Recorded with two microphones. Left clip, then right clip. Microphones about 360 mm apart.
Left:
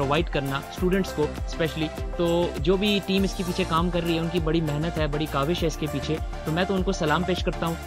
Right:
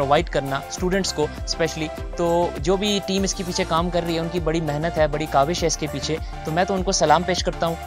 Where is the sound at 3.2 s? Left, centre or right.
Centre.